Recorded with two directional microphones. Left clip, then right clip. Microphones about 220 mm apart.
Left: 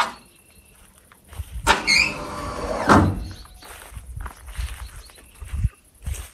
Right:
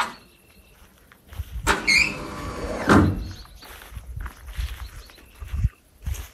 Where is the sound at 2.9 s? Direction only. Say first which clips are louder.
Left 2 dB; 25° left (ahead or behind).